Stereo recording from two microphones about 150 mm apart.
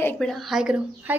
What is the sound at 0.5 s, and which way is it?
Speech, 5° right (ahead or behind).